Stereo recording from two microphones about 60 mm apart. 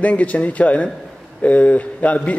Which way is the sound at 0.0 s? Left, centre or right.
Left.